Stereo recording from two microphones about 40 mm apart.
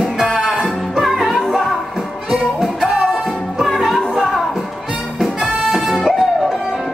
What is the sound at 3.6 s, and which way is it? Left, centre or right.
Music, centre.